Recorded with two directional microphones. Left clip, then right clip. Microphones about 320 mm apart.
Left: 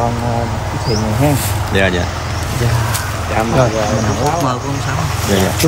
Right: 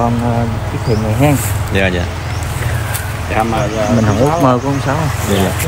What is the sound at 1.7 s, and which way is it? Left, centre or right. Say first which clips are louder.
Speech: left 1 dB; centre.